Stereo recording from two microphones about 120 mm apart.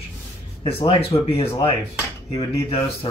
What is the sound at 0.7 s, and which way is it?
Speech, 50° left (ahead or behind).